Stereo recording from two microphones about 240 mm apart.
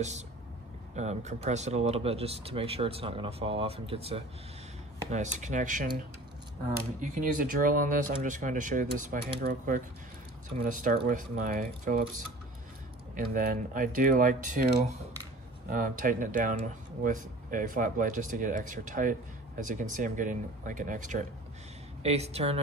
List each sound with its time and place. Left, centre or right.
0.9 s speech: right
7.0 s speech: right
13.1 s speech: right